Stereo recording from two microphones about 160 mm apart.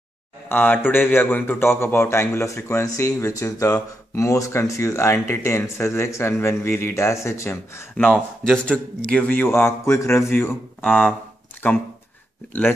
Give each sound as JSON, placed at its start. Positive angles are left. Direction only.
{"t": 0.5, "sound": "a man's voice", "side_deg": 10}